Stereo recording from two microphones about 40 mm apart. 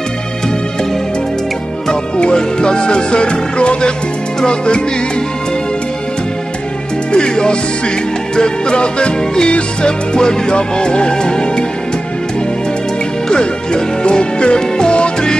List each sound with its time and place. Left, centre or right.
2.1 s music: left
7.1 s music: left
13.3 s music: left